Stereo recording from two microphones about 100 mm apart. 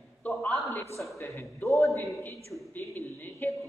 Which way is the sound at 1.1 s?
30° left (ahead or behind).